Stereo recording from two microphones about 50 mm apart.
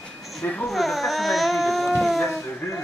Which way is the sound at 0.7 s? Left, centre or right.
Centre.